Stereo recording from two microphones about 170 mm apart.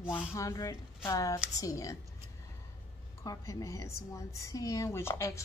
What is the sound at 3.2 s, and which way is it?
A woman's voice, 20° left (ahead or behind).